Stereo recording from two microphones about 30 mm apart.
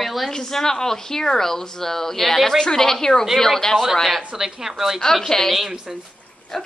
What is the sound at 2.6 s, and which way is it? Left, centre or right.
Speech, centre.